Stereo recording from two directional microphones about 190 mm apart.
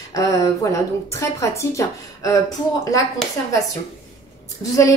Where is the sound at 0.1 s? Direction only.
15° left (ahead or behind).